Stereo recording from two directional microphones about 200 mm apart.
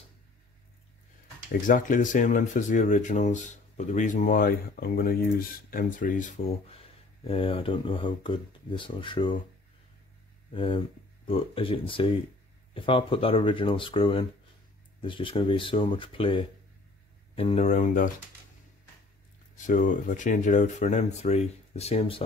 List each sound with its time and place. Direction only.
1.7 s speech: 40° left (ahead or behind)
7.2 s speech: 25° left (ahead or behind)
10.5 s speech: 25° left (ahead or behind); by 18.1 s 40° left (ahead or behind)
19.5 s speech: 40° left (ahead or behind)